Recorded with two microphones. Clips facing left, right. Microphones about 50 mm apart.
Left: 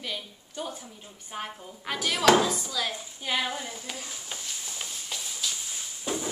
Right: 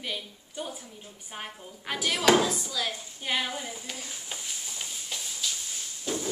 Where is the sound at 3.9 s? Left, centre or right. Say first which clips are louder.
Left 1 dB; centre.